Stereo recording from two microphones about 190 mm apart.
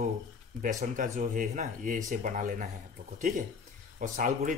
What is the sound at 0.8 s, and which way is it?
Speech, 40° right (ahead or behind).